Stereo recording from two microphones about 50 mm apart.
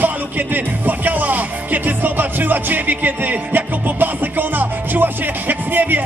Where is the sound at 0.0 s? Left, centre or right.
Right.